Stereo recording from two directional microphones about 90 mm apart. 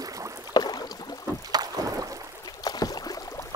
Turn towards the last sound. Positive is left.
turn(degrees=40)  # may be behind; listen again after turning